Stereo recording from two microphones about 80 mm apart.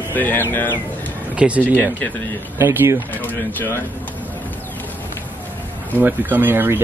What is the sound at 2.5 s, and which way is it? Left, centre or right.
Speech, right.